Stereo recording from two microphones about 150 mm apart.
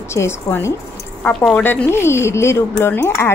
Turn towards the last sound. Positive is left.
turn(degrees=15)  # may be behind; listen again after turning